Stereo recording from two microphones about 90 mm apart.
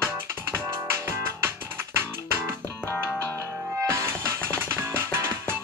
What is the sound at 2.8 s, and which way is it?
Music, 20° left (ahead or behind).